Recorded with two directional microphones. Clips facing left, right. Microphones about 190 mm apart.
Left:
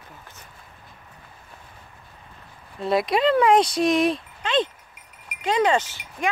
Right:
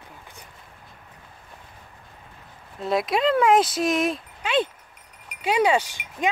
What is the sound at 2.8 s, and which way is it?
Speech, centre (ahead or behind).